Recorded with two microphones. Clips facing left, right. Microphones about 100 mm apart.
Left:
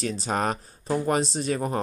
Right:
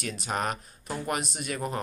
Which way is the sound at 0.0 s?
35° left (ahead or behind).